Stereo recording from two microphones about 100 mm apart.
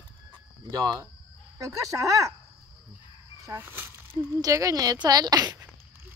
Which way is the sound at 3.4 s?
20° right (ahead or behind).